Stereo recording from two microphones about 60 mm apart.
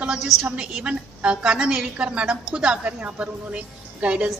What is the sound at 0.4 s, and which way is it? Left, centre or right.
A woman's voice, right.